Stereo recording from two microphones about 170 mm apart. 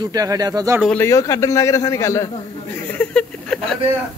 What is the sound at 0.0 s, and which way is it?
Speech, 20° right (ahead or behind).